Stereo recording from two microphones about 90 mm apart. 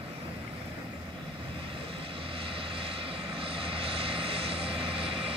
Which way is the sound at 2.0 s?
85° right.